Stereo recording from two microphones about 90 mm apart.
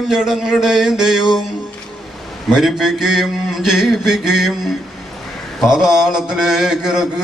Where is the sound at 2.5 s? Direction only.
5° right (ahead or behind).